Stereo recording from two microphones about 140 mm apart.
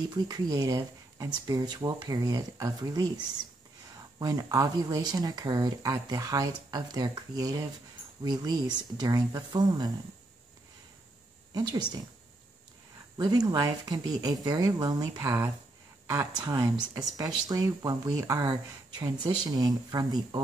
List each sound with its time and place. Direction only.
0.1 s speech: 30° right (ahead or behind)
4.2 s speech: 25° right (ahead or behind)
11.5 s speech: 30° right (ahead or behind)
13.2 s speech: 30° right (ahead or behind)